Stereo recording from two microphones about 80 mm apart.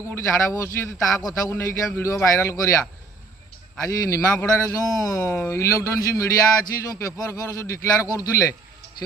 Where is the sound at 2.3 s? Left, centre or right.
Left.